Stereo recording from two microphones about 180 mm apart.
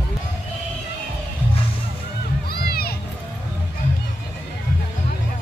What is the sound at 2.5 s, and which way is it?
Music, 60° left (ahead or behind).